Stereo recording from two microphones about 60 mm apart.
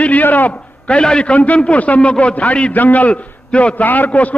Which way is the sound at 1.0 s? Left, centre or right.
Centre.